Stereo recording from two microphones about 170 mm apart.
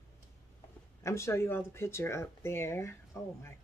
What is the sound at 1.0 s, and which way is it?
Speech, 15° left (ahead or behind).